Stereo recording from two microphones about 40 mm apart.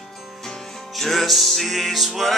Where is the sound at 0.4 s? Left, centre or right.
Centre.